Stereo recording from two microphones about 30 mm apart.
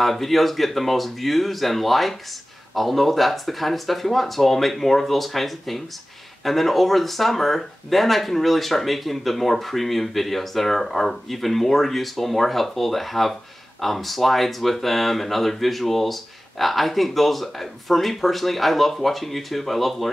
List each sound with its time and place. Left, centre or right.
0.0 s speech: centre